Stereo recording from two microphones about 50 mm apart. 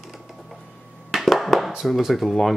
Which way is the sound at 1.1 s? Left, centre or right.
Centre.